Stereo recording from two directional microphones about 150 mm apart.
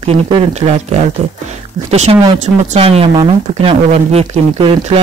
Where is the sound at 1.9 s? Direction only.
45° right (ahead or behind).